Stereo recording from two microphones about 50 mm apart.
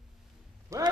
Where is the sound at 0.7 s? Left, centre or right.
Right.